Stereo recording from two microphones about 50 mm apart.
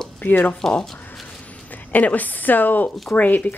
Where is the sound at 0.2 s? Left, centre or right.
Left.